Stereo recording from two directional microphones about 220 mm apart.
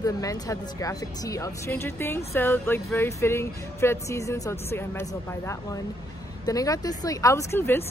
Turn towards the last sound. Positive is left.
turn(degrees=10)  # may be behind; listen again after turning